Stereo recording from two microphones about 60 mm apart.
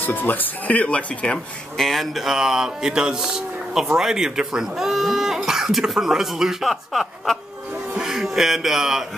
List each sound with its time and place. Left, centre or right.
0.0 s speech: left
1.8 s a man's voice: centre